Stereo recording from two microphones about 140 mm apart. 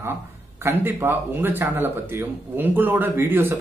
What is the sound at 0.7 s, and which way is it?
A man's voice, 15° right (ahead or behind).